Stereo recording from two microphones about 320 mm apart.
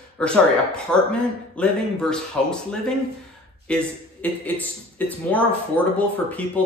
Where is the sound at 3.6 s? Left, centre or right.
Centre.